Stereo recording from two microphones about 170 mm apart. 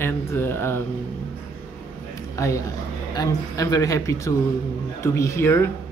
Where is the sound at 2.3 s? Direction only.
20° left (ahead or behind).